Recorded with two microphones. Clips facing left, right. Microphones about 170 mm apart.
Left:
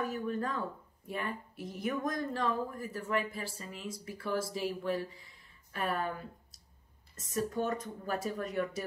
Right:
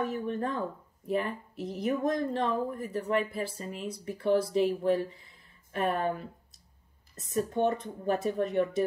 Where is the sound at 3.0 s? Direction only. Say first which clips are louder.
Right 5 dB; 40° right (ahead or behind).